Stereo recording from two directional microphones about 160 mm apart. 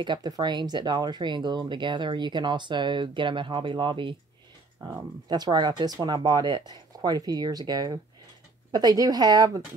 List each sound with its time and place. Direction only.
0.0 s speech: 25° right (ahead or behind)